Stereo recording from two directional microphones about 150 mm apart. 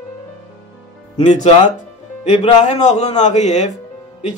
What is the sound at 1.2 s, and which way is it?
Speech, 50° left (ahead or behind).